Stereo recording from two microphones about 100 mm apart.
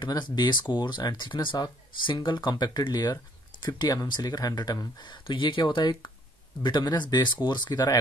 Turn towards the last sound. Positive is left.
turn(degrees=40)  # may be behind; listen again after turning